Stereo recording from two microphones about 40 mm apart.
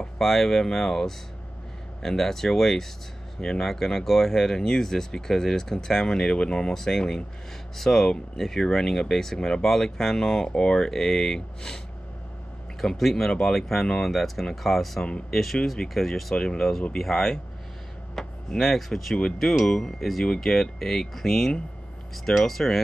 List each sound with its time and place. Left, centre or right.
0.0 s speech: centre
6.7 s speech: centre
12.8 s speech: left